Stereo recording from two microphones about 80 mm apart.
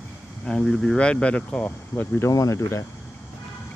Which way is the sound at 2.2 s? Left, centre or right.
Left.